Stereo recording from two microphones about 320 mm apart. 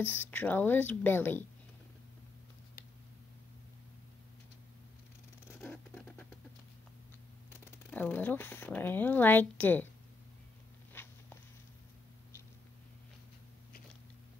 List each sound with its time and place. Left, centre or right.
0.0 s speech: centre
5.5 s a sound: centre
7.9 s speech: centre
10.9 s walk: centre